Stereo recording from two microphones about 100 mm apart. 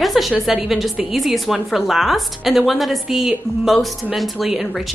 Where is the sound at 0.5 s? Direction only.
Centre (ahead or behind).